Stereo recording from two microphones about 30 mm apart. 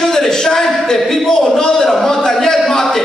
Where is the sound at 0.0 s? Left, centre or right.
Centre.